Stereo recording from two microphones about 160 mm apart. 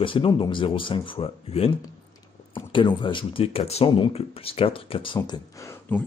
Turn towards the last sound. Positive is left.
turn(degrees=20)  # may be behind; listen again after turning